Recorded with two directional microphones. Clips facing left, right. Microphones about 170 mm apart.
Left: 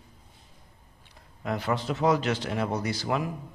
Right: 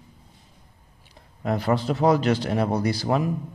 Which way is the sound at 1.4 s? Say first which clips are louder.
Right 5 dB; 40° right (ahead or behind).